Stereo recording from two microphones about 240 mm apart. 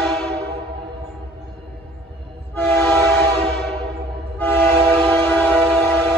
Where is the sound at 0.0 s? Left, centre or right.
Centre.